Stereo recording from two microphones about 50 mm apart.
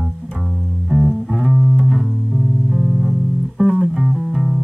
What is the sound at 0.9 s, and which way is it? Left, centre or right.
Music, centre.